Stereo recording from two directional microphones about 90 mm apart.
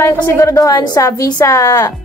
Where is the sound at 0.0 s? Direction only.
35° left (ahead or behind).